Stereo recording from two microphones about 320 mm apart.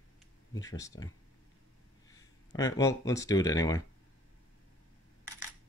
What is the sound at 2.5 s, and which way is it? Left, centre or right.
Speech, centre.